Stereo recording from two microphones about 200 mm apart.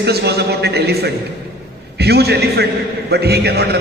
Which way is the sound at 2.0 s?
55° right (ahead or behind).